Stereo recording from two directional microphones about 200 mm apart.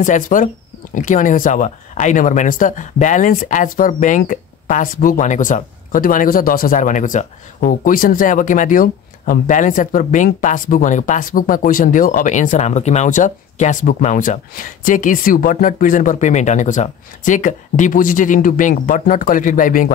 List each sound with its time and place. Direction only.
0.0 s speech: 40° left (ahead or behind)